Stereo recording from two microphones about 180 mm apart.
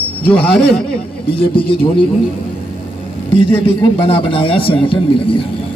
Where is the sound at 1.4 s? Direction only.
30° left (ahead or behind).